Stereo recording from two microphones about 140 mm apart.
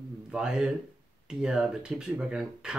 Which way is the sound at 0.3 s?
5° right (ahead or behind).